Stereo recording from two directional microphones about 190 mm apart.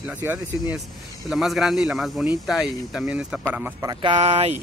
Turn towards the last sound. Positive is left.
turn(degrees=-35)  # may be behind; listen again after turning